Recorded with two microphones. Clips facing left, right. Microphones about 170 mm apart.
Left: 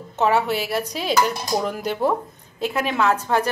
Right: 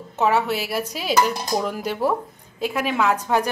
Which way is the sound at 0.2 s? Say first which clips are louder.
Left 1 dB; centre (ahead or behind).